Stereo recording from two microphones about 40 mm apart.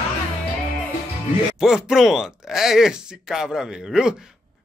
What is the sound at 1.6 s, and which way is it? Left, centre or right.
Speech, centre.